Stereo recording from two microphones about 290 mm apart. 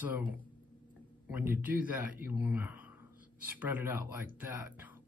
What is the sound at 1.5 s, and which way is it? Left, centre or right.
Speech, centre.